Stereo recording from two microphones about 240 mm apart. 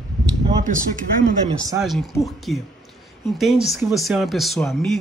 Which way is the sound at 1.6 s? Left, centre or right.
Centre.